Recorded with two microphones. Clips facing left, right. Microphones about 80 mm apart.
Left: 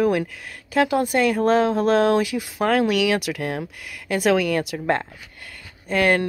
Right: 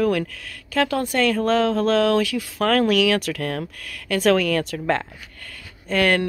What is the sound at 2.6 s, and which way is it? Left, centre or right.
Speech, centre.